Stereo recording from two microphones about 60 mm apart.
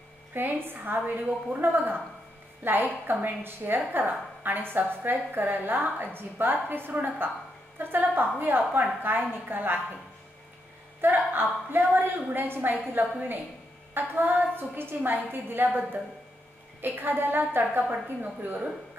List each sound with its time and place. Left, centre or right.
0.3 s speech: right
11.0 s speech: right